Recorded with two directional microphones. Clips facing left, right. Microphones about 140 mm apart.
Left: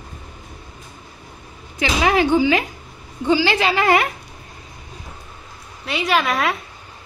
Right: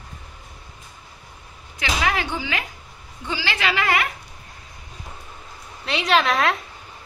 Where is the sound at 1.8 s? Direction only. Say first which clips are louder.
Left 6 dB; 25° left (ahead or behind).